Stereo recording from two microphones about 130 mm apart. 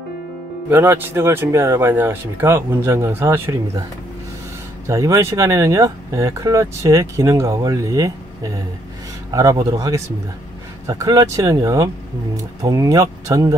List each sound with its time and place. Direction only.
0.7 s speech: 15° right (ahead or behind)
4.8 s speech: 20° right (ahead or behind)